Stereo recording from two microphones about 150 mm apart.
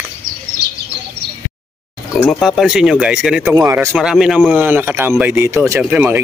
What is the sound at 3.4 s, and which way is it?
Speech, 15° right (ahead or behind).